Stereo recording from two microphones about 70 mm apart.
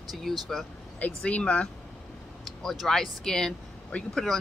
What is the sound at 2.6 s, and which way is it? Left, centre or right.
Speech, centre.